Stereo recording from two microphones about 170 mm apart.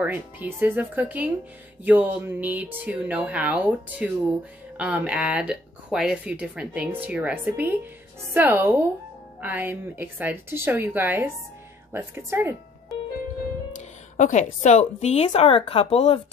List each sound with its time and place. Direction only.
0.0 s speech: 10° right (ahead or behind)
14.1 s speech: 45° left (ahead or behind)